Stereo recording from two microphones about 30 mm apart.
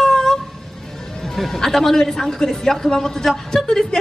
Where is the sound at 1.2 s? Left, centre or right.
Centre.